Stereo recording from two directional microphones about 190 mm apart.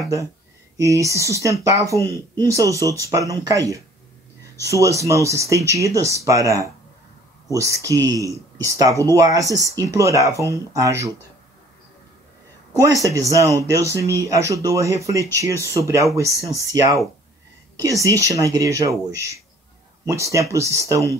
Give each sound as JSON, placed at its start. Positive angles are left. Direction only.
{"t": 0.7, "sound": "speech", "side_deg": -15}
{"t": 12.7, "sound": "speech", "side_deg": -15}
{"t": 18.0, "sound": "speech", "side_deg": -15}